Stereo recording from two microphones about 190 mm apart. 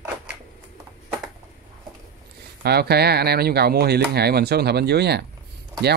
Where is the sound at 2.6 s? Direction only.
55° right (ahead or behind).